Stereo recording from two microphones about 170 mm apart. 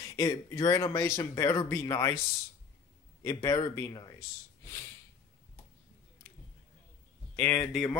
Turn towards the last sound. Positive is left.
turn(degrees=5)  # may be behind; listen again after turning